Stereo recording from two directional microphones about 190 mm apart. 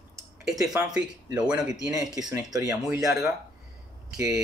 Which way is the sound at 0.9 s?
5° right (ahead or behind).